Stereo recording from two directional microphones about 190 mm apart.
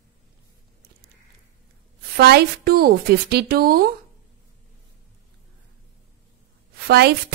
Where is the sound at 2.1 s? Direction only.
60° right (ahead or behind).